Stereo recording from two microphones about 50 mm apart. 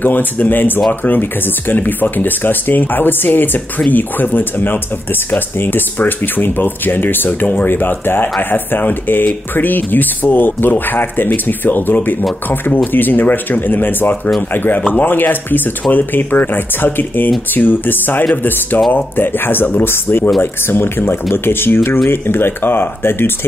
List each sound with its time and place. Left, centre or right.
0.0 s speech: left